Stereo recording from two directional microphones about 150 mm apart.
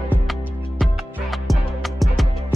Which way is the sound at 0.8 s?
Centre (ahead or behind).